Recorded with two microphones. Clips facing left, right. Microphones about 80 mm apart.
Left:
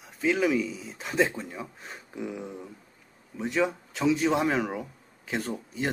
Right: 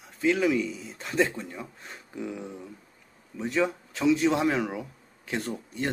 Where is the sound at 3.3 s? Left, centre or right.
Centre.